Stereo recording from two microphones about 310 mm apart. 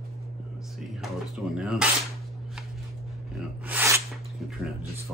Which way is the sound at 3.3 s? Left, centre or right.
Centre.